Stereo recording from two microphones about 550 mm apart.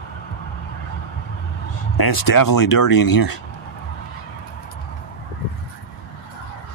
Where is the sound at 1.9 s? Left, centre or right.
Left.